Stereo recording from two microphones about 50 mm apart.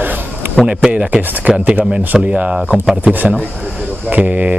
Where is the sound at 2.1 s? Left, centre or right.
Right.